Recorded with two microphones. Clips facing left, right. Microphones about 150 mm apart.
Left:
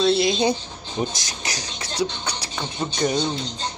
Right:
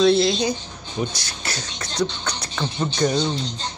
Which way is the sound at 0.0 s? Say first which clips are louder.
Right 2 dB; 10° left (ahead or behind).